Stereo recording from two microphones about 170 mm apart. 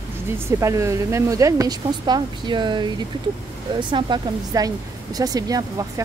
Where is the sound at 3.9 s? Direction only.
25° right (ahead or behind).